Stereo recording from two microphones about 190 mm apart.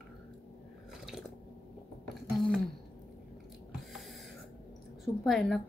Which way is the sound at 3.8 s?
Centre (ahead or behind).